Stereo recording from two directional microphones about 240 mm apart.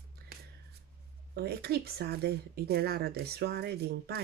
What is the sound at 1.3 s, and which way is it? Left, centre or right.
Speech, right.